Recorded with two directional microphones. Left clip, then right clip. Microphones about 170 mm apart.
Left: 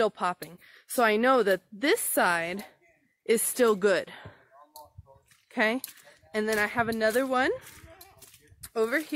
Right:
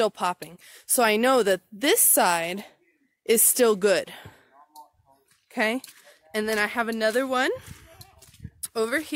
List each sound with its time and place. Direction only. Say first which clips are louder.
0.0 s a woman's voice: right 2 dB; 35° right (ahead or behind)
5.5 s speech: right 1 dB; 30° right (ahead or behind)
8.6 s speech: right 1 dB; 35° right (ahead or behind)